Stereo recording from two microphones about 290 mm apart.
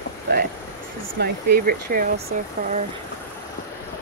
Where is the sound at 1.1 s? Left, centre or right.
Right.